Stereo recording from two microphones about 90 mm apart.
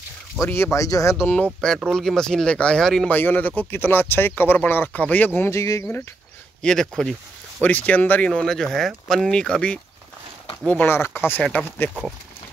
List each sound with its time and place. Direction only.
0.4 s speech: 30° left (ahead or behind)
1.3 s speech: 10° left (ahead or behind)
3.1 s speech: 20° left (ahead or behind)
5.6 s speech: 35° left (ahead or behind)
6.6 s speech: 5° left (ahead or behind)
7.6 s speech: 15° left (ahead or behind)
8.3 s speech: 5° left (ahead or behind)
10.7 s speech: 20° left (ahead or behind)